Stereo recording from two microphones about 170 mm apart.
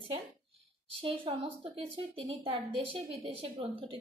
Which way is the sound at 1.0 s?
30° right (ahead or behind).